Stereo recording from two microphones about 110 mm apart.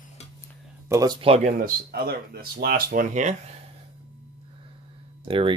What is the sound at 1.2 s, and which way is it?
Speech, 70° right (ahead or behind).